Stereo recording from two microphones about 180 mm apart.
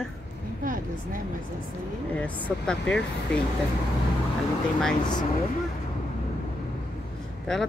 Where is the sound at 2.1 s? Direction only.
10° left (ahead or behind).